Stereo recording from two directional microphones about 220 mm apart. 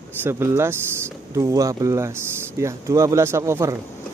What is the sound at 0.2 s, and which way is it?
Speech, 10° right (ahead or behind).